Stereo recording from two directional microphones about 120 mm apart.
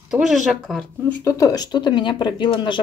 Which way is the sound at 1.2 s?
30° left (ahead or behind).